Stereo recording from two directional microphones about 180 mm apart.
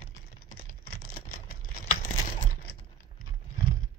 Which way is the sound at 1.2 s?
55° left (ahead or behind).